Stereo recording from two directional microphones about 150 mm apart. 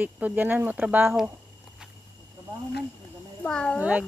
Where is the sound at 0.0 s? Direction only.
10° right (ahead or behind).